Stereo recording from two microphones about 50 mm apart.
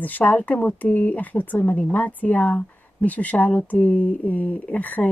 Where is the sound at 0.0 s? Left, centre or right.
Left.